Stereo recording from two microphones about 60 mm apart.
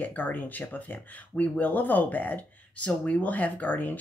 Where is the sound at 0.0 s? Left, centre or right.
Left.